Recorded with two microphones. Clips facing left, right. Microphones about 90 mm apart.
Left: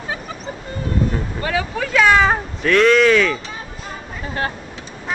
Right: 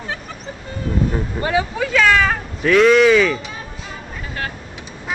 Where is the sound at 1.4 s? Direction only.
25° right (ahead or behind).